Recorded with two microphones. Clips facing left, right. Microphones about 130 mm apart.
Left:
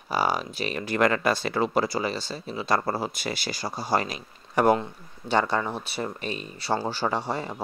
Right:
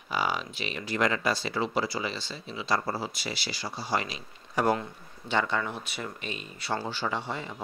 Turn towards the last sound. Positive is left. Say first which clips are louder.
# left 5 dB
turn(degrees=40)  # may be behind; listen again after turning